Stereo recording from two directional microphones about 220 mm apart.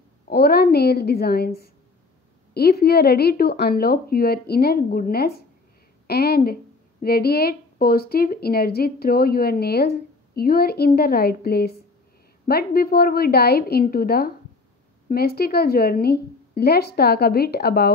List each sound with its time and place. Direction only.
0.3 s a woman's voice: 45° left (ahead or behind)